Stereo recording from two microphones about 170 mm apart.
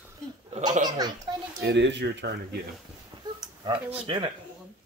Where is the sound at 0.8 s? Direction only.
25° right (ahead or behind).